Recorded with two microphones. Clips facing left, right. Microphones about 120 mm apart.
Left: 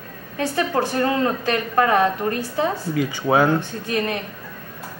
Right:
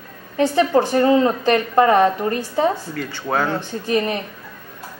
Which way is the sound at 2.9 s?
10° left (ahead or behind).